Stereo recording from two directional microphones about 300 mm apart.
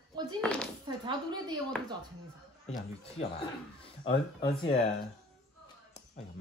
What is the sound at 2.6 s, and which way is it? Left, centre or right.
Speech, left.